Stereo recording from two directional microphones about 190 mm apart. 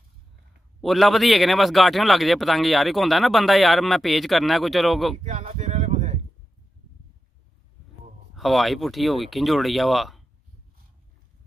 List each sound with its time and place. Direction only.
0.7 s a man's voice: centre (ahead or behind)
5.2 s a sound: 40° right (ahead or behind)
8.4 s a man's voice: centre (ahead or behind)